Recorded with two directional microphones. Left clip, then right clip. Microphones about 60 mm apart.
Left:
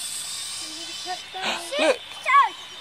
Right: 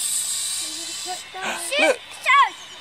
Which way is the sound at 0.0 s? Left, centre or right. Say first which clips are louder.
Right 5 dB; right.